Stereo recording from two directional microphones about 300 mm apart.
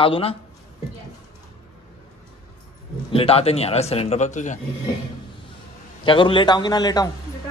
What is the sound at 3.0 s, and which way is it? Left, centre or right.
A man's voice, centre.